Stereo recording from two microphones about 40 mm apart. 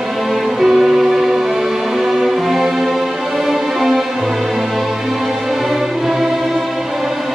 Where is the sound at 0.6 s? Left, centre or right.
Centre.